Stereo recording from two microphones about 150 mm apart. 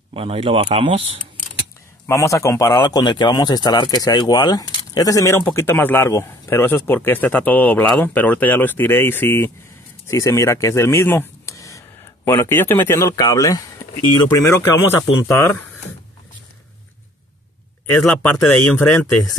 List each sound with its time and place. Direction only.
0.1 s speech: 40° right (ahead or behind)
2.0 s a man's voice: 20° left (ahead or behind)
18.0 s speech: 5° left (ahead or behind)